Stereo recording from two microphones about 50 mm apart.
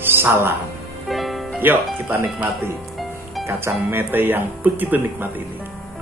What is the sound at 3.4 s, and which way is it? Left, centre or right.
Speech, right.